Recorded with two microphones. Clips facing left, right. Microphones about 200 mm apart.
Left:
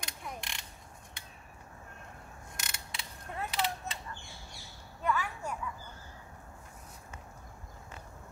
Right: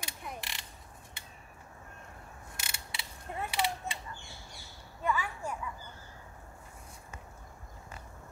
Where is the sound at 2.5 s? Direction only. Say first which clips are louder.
Left 1 dB; 5° right (ahead or behind).